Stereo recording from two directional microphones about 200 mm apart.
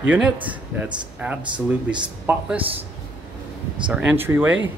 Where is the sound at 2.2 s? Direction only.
10° right (ahead or behind).